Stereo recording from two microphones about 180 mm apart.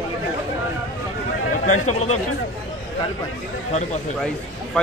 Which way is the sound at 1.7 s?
40° left (ahead or behind).